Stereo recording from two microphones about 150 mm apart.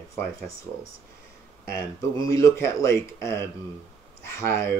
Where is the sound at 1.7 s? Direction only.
20° left (ahead or behind).